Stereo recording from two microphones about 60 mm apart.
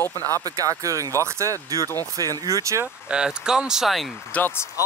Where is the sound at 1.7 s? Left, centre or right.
Right.